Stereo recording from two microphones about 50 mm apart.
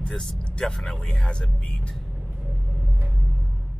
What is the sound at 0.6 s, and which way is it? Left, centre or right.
Speech, centre.